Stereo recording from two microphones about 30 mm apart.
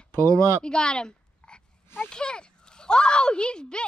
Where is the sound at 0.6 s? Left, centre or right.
Left.